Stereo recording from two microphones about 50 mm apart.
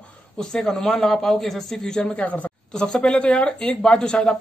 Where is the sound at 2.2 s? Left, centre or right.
Left.